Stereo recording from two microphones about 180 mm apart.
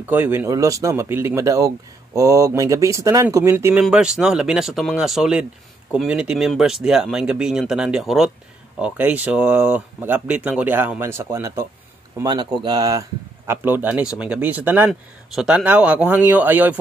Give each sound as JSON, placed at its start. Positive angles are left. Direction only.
{"t": 0.1, "sound": "speech", "side_deg": -10}
{"t": 13.5, "sound": "speech", "side_deg": -10}